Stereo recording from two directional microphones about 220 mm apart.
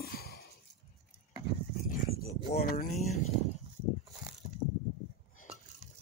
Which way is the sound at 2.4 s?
25° left (ahead or behind).